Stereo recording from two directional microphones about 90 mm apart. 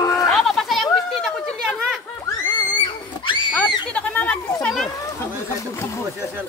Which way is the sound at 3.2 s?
65° left (ahead or behind).